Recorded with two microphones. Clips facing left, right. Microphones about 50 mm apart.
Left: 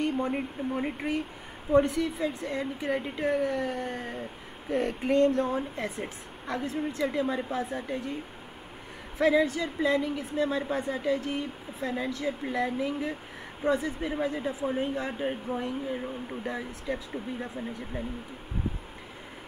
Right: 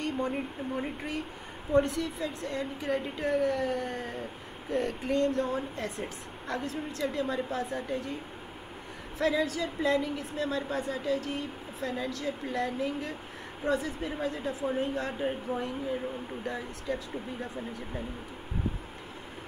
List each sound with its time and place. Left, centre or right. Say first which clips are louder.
0.0 s speech: left 3 dB; centre
5.2 s a woman's voice: left 4 dB; left
5.9 s a woman's voice: left 1 dB; centre
7.0 s speech: left 1 dB; centre
9.6 s speech: left 1 dB; centre
10.4 s a woman's voice: left 3 dB; centre